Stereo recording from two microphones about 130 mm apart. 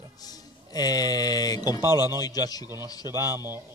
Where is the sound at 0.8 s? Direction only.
30° left (ahead or behind).